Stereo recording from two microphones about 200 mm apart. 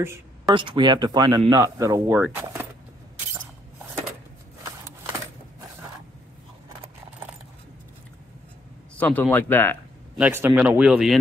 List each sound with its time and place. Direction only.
0.0 s speech: 10° right (ahead or behind)
0.6 s speech: 25° right (ahead or behind)
8.9 s speech: 10° left (ahead or behind)
10.1 s speech: 10° right (ahead or behind)